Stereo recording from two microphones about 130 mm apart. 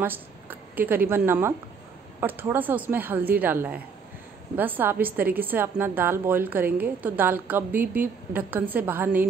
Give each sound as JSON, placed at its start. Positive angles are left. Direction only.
{"t": 0.0, "sound": "a woman's voice", "side_deg": -15}